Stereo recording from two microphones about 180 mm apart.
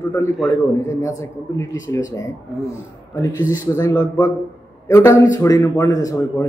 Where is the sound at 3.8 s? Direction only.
15° left (ahead or behind).